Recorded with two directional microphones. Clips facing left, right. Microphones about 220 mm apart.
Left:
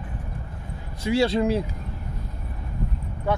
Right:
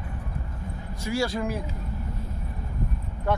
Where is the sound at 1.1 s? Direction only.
25° left (ahead or behind).